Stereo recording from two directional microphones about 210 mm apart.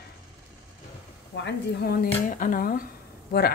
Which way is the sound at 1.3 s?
55° left (ahead or behind).